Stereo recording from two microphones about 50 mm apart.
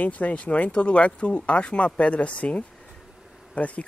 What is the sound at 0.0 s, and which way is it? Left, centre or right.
Speech, left.